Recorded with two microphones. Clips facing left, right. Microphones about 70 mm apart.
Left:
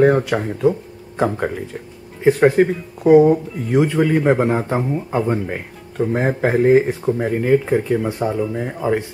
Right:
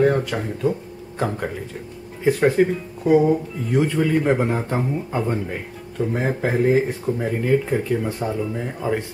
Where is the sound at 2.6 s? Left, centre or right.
Left.